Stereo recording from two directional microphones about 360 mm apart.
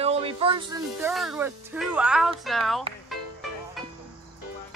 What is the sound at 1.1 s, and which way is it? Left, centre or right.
Speech, centre.